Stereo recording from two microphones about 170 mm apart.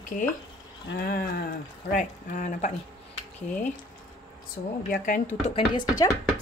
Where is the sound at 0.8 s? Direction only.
65° left (ahead or behind).